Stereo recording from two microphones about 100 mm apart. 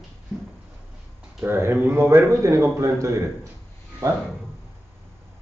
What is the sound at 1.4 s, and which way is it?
A man's voice, 25° right (ahead or behind).